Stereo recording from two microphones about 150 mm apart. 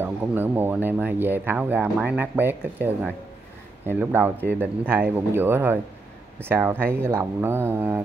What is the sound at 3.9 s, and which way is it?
Speech, 15° right (ahead or behind).